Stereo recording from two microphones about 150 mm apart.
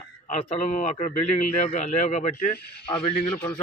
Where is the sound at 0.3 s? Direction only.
45° left (ahead or behind).